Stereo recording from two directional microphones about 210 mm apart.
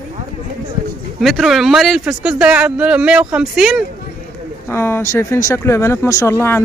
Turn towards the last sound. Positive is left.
turn(degrees=10)  # may be behind; listen again after turning